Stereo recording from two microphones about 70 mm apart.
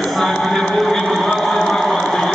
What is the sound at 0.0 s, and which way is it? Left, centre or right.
Speech, centre.